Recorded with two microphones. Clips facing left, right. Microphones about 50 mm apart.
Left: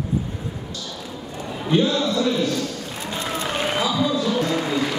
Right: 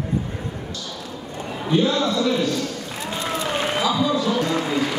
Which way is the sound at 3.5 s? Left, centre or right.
Centre.